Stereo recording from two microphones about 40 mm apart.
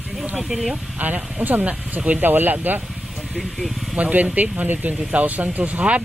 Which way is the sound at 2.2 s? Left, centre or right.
Right.